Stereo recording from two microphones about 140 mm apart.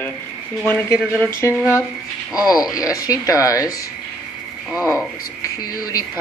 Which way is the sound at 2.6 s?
25° left (ahead or behind).